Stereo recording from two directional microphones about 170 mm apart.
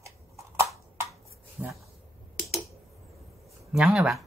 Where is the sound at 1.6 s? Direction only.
15° right (ahead or behind).